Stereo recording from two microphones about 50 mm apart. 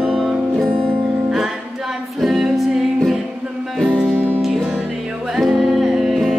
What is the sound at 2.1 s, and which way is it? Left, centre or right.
Music, centre.